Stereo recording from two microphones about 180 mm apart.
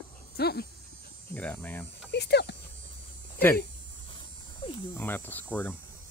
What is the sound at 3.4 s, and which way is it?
Speech, 10° left (ahead or behind).